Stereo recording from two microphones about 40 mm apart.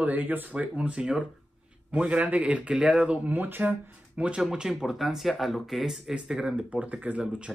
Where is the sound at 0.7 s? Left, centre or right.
Right.